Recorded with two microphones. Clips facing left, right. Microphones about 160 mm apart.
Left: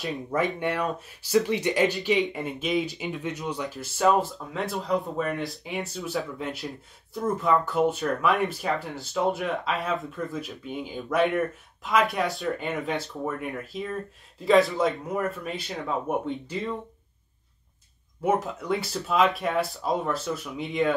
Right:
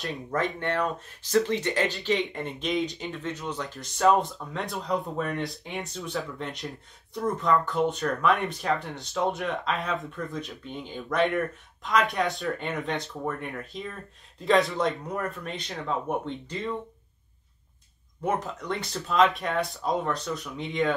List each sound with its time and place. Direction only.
0.0 s speech: centre (ahead or behind)
0.4 s speech: 10° left (ahead or behind)
2.3 s speech: 5° left (ahead or behind)
18.2 s speech: 5° left (ahead or behind)